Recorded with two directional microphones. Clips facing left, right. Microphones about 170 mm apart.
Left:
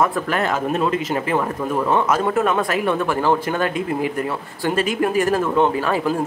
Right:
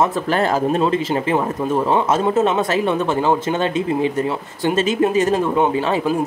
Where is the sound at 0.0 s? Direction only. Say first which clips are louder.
Right 2 dB; 30° right (ahead or behind).